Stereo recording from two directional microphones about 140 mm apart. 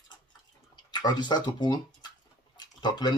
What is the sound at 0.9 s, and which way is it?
Speech, 30° left (ahead or behind).